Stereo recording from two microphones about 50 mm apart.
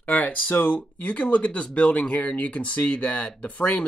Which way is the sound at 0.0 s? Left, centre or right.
Left.